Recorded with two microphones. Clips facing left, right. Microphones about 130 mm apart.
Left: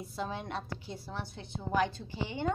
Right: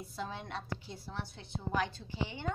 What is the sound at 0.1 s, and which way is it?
Speech, 10° left (ahead or behind).